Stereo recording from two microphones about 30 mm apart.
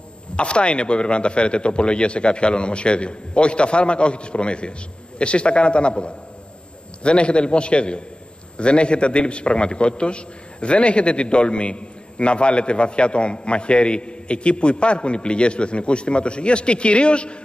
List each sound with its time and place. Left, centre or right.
0.4 s a man's voice: left